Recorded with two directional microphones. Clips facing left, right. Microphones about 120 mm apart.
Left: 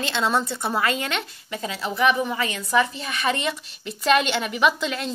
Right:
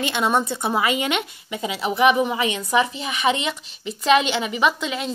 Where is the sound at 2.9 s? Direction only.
5° right (ahead or behind).